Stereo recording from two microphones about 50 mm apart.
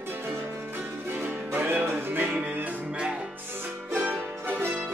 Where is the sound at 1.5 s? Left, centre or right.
Right.